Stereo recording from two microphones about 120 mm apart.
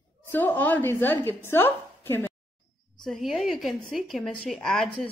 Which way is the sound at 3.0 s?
5° left (ahead or behind).